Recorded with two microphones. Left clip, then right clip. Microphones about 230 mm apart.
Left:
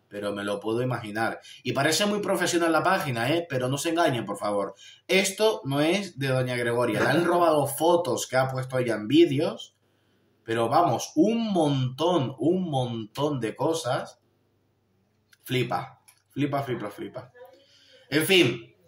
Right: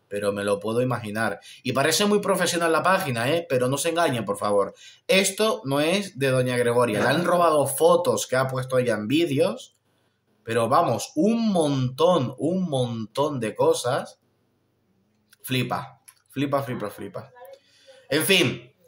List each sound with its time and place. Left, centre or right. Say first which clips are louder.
0.1 s speech: right 6 dB; right
15.4 s speech: right 1 dB; right
17.6 s a sound: right 8 dB; right